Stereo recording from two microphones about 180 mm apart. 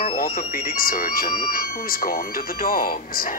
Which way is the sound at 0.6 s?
55° left (ahead or behind).